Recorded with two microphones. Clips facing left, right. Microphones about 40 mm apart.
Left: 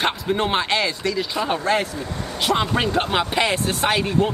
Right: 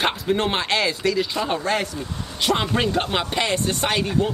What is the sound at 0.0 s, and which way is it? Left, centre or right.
Speech, centre.